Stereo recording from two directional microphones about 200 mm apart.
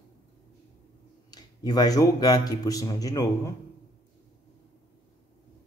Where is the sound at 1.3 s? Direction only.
20° left (ahead or behind).